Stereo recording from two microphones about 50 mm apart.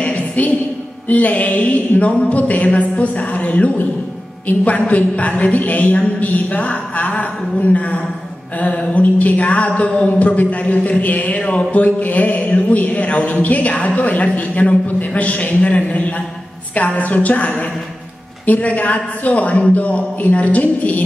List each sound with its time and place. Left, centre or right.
0.0 s music: left
1.0 s a man's voice: left